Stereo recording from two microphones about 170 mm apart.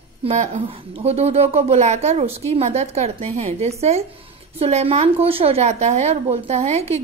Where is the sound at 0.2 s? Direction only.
40° right (ahead or behind).